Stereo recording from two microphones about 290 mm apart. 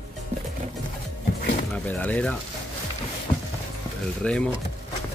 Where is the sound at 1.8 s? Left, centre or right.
Centre.